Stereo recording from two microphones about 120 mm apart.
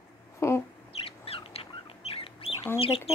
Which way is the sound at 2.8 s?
55° left (ahead or behind).